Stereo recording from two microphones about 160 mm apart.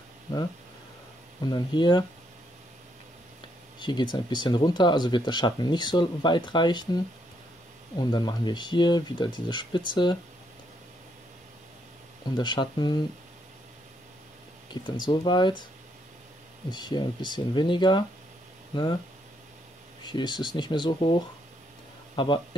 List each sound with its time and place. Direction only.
1.4 s speech: 30° left (ahead or behind)
3.8 s speech: 30° left (ahead or behind)
8.0 s speech: 25° left (ahead or behind)
12.4 s speech: 30° left (ahead or behind)
14.7 s speech: 30° left (ahead or behind)
16.7 s speech: 30° left (ahead or behind)
20.1 s speech: 25° left (ahead or behind)
22.1 s speech: 30° left (ahead or behind)